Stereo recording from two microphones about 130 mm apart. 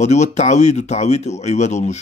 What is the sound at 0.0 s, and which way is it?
A man's voice, 60° left (ahead or behind).